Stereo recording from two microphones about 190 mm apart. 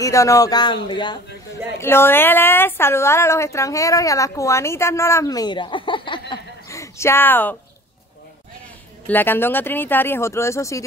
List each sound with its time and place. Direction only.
0.0 s speech: 15° left (ahead or behind)
1.8 s a woman's voice: 10° left (ahead or behind)
9.0 s a woman's voice: 10° left (ahead or behind)